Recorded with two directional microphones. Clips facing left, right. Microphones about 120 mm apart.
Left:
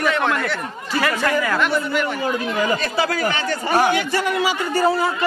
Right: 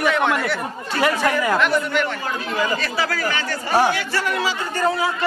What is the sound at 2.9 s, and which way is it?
A man's voice, 25° left (ahead or behind).